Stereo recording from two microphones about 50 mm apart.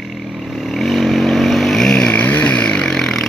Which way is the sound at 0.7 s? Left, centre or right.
Centre.